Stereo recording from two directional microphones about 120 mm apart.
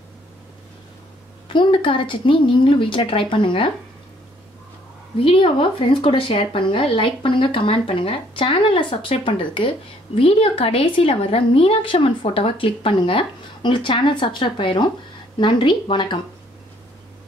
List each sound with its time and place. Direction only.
1.5 s a woman's voice: 45° left (ahead or behind)
5.2 s a woman's voice: 45° left (ahead or behind)